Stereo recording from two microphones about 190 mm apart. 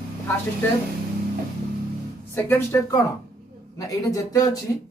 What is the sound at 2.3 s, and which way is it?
Speech, 10° left (ahead or behind).